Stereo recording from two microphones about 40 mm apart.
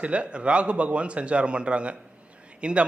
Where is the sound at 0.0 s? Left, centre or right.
Right.